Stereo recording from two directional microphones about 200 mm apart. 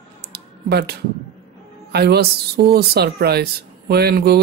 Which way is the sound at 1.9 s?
55° right (ahead or behind).